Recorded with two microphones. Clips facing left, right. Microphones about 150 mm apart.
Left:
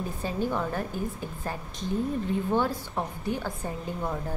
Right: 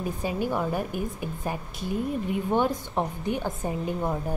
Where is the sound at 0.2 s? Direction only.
10° right (ahead or behind).